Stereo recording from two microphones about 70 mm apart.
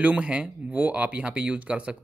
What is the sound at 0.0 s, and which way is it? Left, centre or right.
Speech, centre.